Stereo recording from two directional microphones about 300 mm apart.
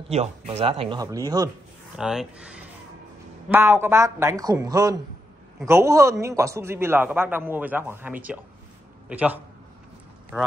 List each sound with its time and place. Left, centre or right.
0.1 s a man's voice: right; by 9.4 s centre